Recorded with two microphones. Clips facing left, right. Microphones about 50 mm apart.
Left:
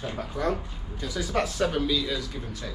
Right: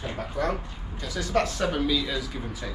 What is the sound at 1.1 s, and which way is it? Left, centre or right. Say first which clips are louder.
Speech: right 2 dB; centre.